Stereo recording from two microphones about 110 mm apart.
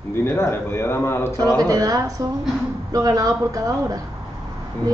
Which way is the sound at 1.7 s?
35° right (ahead or behind).